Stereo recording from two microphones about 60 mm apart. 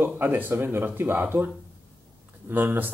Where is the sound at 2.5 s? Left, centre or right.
Right.